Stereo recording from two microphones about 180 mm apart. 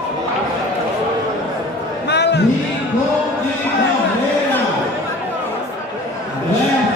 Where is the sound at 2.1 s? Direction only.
70° left (ahead or behind).